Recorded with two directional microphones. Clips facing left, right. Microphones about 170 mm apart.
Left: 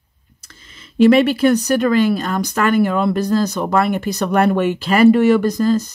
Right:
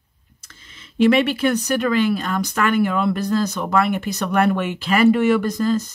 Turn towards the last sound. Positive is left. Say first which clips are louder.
# left 4 dB
turn(degrees=40)  # may be behind; listen again after turning